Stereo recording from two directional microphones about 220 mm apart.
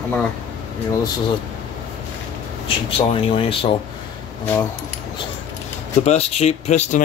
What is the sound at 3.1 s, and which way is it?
Speech, 25° left (ahead or behind).